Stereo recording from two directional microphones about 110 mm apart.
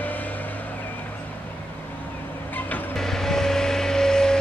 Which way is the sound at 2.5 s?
15° left (ahead or behind).